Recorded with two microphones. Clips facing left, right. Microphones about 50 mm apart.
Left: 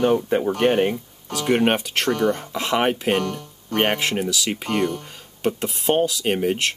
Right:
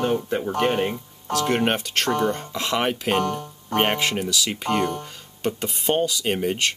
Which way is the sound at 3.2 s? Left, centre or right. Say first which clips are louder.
Right 2 dB; right.